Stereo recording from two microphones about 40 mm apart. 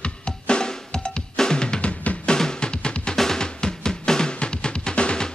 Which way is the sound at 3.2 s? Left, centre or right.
Centre.